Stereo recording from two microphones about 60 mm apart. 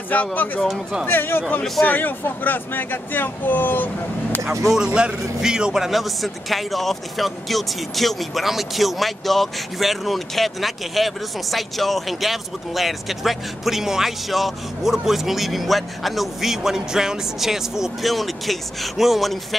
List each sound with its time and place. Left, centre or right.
0.1 s speech: left
4.5 s a man's voice: centre